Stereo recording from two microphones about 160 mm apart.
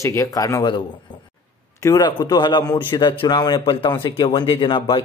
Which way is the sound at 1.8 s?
25° left (ahead or behind).